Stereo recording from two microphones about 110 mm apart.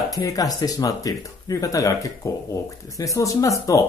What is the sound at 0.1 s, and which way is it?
Speech, 35° left (ahead or behind).